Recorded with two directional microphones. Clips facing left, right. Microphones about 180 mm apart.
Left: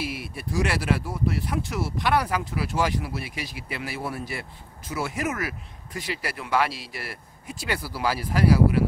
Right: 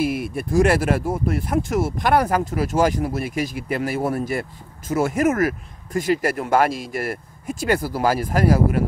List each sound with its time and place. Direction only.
0.0 s speech: 50° right (ahead or behind)